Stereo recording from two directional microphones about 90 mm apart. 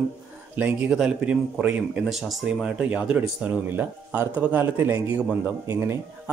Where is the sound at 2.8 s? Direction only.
15° right (ahead or behind).